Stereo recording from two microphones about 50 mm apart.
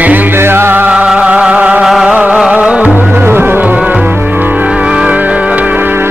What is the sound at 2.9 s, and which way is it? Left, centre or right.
Music, right.